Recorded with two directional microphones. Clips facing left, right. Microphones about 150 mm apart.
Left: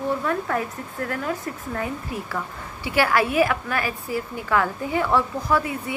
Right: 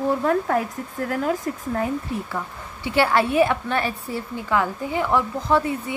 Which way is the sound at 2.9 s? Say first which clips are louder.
Right 2 dB; 25° right (ahead or behind).